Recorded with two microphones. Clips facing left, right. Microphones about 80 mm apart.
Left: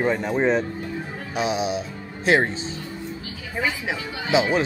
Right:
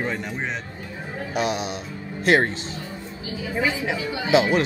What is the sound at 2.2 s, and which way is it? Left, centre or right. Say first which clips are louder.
Speech: right 1 dB; centre.